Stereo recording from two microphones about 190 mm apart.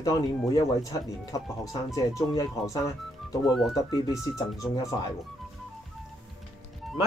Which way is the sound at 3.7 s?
20° left (ahead or behind).